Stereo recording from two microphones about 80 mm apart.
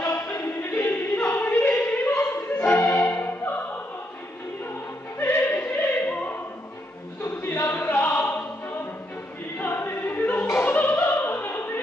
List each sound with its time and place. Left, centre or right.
0.0 s choir: left
5.2 s opera: left
7.2 s choir: left
10.6 s opera: left